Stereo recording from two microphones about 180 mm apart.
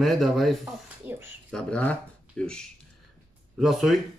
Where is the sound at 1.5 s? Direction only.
5° left (ahead or behind).